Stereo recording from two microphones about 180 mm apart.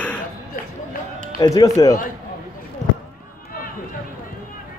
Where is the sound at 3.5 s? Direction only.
50° left (ahead or behind).